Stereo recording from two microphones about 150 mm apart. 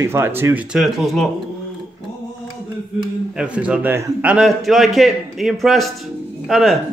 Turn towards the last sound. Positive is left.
turn(degrees=0)  # may be behind; listen again after turning